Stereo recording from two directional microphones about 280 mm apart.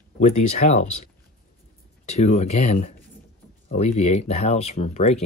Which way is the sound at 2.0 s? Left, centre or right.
Left.